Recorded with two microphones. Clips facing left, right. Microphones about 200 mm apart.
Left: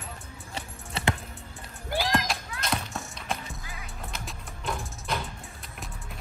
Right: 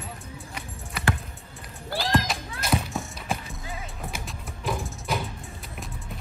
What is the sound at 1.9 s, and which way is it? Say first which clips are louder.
Music: left 1 dB; 15° left (ahead or behind).